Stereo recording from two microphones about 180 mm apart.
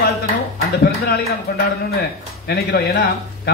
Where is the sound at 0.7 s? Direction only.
65° left (ahead or behind).